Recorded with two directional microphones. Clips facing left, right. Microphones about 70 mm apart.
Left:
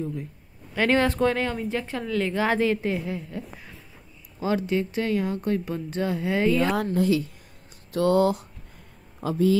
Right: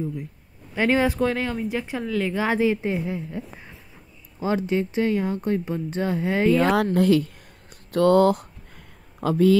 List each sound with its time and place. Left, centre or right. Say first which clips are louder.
0.7 s speech: right 1 dB; centre
2.8 s speech: right 2 dB; right
6.7 s speech: right 4 dB; right
7.9 s music: right 4 dB; right
9.2 s speech: right 4 dB; right